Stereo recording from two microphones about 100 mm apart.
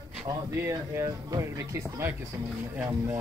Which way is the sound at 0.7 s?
30° right (ahead or behind).